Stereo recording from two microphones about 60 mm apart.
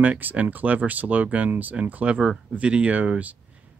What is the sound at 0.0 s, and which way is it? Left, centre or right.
Speech, right.